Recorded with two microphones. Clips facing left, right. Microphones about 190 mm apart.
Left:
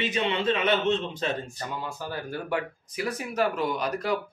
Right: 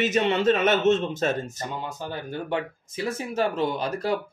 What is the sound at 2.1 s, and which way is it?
Speech, 20° right (ahead or behind).